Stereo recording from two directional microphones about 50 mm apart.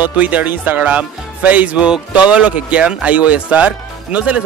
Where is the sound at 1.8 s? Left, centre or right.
Centre.